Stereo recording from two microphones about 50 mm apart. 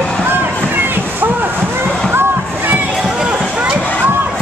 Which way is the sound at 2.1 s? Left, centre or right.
Right.